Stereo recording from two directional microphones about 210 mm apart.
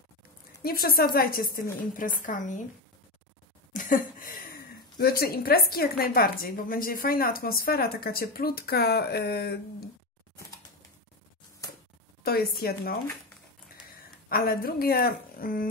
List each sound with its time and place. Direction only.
0.6 s a woman's voice: 45° left (ahead or behind)
3.7 s speech: 40° left (ahead or behind)
12.2 s speech: 50° left (ahead or behind)
14.3 s speech: 45° left (ahead or behind)